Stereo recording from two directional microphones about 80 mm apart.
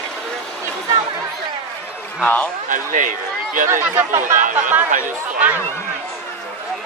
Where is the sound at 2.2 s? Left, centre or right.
Centre.